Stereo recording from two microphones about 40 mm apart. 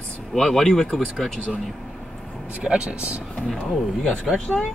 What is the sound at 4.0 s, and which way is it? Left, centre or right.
Speech, centre.